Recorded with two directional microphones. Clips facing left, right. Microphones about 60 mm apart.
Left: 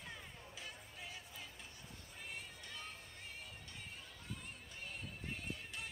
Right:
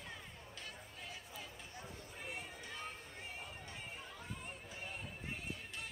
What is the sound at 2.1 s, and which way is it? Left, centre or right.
Music, centre.